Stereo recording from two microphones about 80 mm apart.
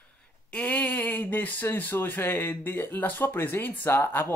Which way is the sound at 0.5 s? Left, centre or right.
Centre.